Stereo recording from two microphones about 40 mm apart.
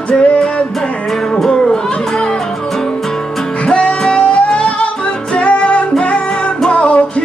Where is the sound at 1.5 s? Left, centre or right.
Centre.